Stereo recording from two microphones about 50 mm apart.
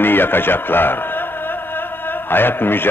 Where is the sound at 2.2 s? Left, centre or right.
Left.